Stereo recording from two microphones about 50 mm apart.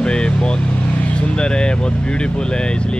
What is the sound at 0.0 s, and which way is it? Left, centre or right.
Vehicle, centre.